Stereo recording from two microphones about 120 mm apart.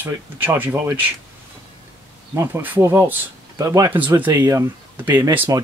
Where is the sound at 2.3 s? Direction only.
20° right (ahead or behind).